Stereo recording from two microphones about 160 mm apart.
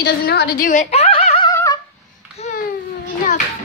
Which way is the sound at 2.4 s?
40° left (ahead or behind).